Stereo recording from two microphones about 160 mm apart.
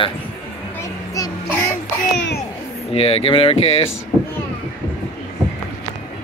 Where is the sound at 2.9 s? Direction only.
40° left (ahead or behind).